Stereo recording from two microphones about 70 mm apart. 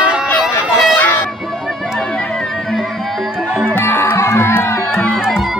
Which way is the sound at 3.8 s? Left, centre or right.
Left.